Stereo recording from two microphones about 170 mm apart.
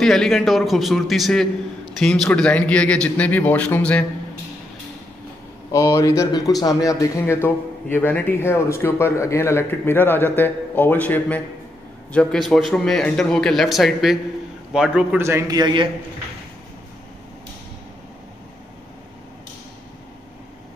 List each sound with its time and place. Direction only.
0.0 s a man's voice: centre (ahead or behind)
5.7 s a man's voice: 20° left (ahead or behind); by 15.9 s 25° right (ahead or behind)